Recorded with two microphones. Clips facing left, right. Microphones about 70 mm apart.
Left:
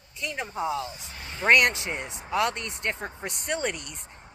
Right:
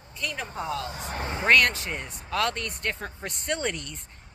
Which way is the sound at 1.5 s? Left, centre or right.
Centre.